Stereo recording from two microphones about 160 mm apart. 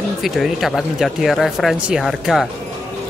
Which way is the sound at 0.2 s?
Centre (ahead or behind).